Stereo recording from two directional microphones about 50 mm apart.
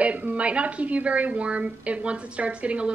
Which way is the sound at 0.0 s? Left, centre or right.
Right.